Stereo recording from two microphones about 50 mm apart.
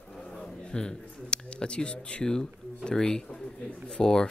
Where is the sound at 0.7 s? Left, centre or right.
Centre.